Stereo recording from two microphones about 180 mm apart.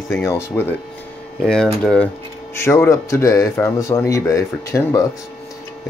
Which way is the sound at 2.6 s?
15° left (ahead or behind).